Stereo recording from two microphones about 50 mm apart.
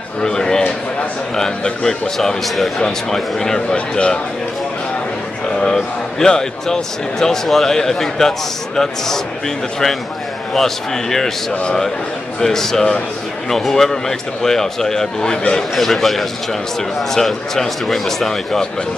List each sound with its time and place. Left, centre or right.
0.2 s a sound: centre
1.3 s speech: centre
5.6 s speech: centre
10.5 s a man's voice: centre